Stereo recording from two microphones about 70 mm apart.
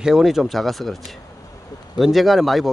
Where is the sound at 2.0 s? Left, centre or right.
Centre.